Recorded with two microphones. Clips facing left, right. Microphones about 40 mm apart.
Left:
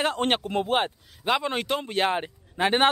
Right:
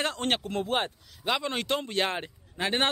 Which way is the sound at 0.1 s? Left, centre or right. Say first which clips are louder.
Left 4 dB; centre.